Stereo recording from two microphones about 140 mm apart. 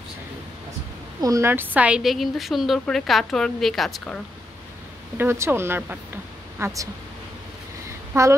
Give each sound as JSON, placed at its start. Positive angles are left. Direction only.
{"t": 1.2, "sound": "a woman's voice", "side_deg": -20}
{"t": 5.1, "sound": "speech", "side_deg": -15}
{"t": 8.1, "sound": "speech", "side_deg": -20}